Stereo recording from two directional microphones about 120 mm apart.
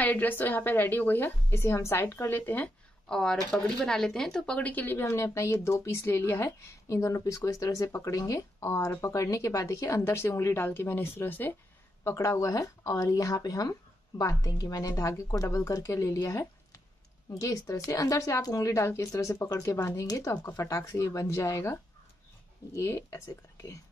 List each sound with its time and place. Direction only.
0.0 s a woman's voice: 15° left (ahead or behind)
3.1 s speech: 5° left (ahead or behind); by 21.7 s 25° left (ahead or behind)
22.8 s speech: 25° left (ahead or behind)